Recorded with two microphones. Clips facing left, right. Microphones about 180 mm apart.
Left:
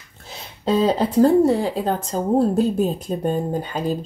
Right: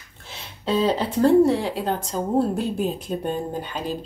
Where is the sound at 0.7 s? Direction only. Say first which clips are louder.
Left 3 dB; 40° left (ahead or behind).